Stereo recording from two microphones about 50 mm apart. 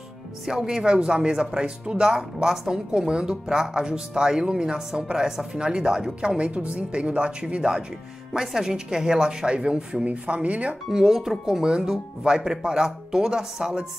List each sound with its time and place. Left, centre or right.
0.5 s speech: centre
10.0 s speech: right
10.9 s speech: centre